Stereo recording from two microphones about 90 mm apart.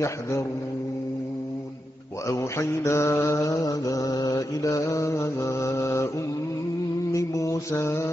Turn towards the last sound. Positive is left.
turn(degrees=35)  # may be behind; listen again after turning